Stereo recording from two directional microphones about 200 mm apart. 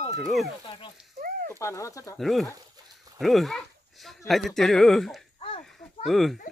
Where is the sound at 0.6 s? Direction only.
25° left (ahead or behind).